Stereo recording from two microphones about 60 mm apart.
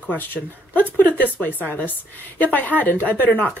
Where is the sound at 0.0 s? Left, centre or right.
Left.